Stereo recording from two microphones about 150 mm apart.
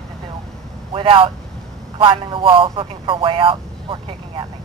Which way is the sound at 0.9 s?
35° right (ahead or behind).